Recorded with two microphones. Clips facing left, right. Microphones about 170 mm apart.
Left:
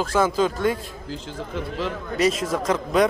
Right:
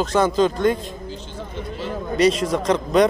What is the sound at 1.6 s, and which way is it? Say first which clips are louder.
Speech: left 2 dB; 90° left.